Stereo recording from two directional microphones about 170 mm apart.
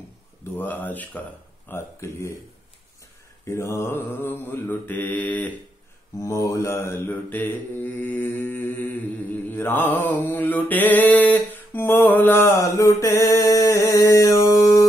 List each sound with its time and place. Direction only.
0.4 s speech: 10° left (ahead or behind)
1.7 s mantra: 15° left (ahead or behind)
3.4 s mantra: 15° left (ahead or behind)